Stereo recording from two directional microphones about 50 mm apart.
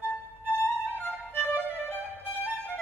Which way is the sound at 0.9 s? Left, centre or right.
Left.